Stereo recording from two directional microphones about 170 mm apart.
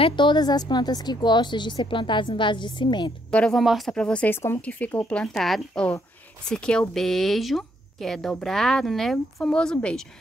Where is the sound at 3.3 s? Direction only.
5° left (ahead or behind).